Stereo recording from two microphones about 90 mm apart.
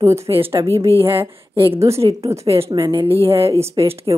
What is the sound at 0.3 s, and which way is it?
Speech, 85° right.